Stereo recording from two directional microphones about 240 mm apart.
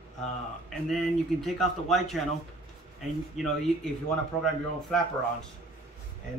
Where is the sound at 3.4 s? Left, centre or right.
Centre.